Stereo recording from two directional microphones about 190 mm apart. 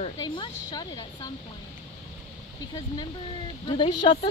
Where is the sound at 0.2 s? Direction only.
20° left (ahead or behind).